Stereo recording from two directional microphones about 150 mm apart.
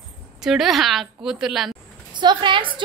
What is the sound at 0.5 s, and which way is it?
Speech, centre (ahead or behind).